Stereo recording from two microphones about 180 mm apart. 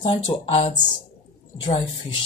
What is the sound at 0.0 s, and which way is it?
Speech, 30° left (ahead or behind).